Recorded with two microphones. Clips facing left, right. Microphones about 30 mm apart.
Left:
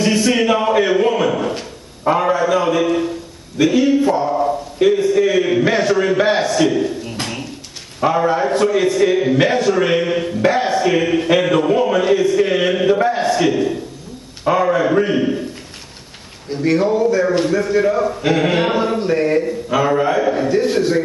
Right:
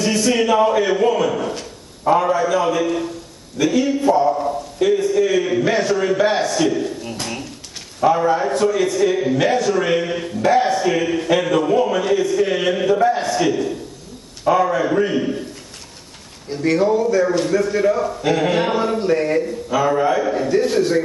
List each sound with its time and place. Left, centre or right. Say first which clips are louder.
0.0 s a sound: left 2 dB; centre
8.0 s a man's voice: even; centre
16.4 s a man's voice: left 1 dB; centre